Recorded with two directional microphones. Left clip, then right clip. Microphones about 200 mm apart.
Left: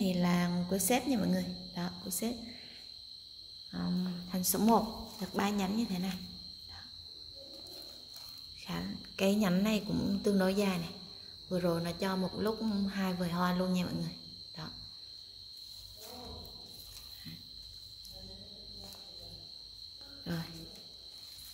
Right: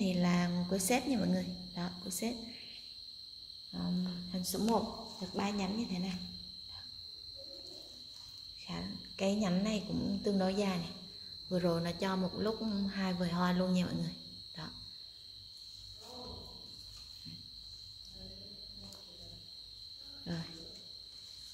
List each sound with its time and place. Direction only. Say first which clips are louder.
0.0 s a woman's voice: left 1 dB; 5° left (ahead or behind)
3.7 s a woman's voice: left 2 dB; 15° left (ahead or behind)
8.6 s a woman's voice: left 3 dB; 15° left (ahead or behind)
11.4 s cricket: left 1 dB; centre (ahead or behind)
20.3 s a woman's voice: left 3 dB; 10° left (ahead or behind)